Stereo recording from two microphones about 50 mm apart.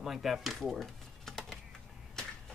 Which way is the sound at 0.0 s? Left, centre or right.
Centre.